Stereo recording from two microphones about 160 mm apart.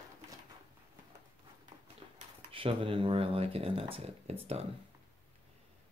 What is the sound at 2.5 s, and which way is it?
Speech, 35° right (ahead or behind).